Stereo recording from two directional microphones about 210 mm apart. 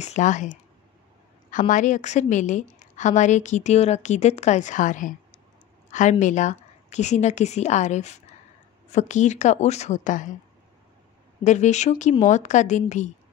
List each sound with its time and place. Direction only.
0.0 s a woman's voice: 35° left (ahead or behind)
11.4 s a woman's voice: 35° left (ahead or behind)